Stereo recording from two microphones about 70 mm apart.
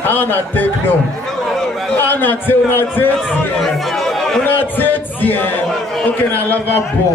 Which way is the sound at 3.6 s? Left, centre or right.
Centre.